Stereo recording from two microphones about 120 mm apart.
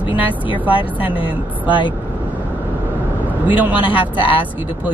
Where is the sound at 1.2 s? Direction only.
45° left (ahead or behind).